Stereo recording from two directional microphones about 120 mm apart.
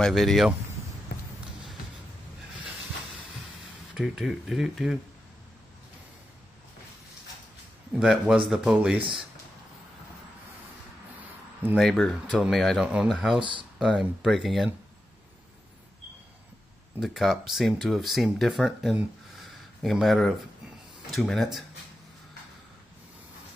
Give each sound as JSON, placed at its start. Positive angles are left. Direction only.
{"t": 0.0, "sound": "speech", "side_deg": 0}
{"t": 3.9, "sound": "speech", "side_deg": -5}
{"t": 8.0, "sound": "speech", "side_deg": -5}
{"t": 11.8, "sound": "speech", "side_deg": 0}
{"t": 17.0, "sound": "speech", "side_deg": 0}